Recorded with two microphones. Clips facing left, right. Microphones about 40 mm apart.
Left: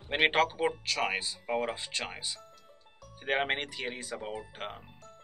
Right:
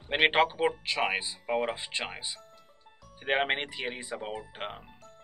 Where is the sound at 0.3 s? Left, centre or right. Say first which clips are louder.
Right 2 dB; right.